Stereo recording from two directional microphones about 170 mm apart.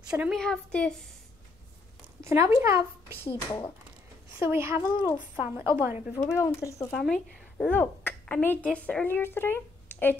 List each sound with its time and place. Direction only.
0.1 s a woman's voice: centre (ahead or behind)
2.2 s speech: 15° right (ahead or behind)
3.3 s a woman's voice: 30° left (ahead or behind)
4.5 s speech: 15° right (ahead or behind)
4.8 s a woman's voice: 25° left (ahead or behind)
5.6 s speech: 15° right (ahead or behind)
6.1 s speech: 20° left (ahead or behind)
7.0 s a woman's voice: centre (ahead or behind)